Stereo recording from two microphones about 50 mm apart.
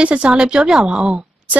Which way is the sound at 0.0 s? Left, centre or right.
Right.